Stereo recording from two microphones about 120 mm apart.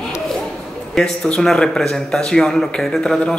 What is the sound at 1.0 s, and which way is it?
A woman's voice, 5° left (ahead or behind).